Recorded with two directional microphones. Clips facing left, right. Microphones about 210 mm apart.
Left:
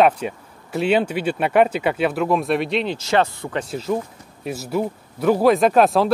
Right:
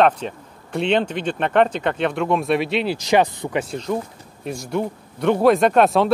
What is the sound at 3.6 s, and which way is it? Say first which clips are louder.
Speech: left 2 dB; 5° left (ahead or behind).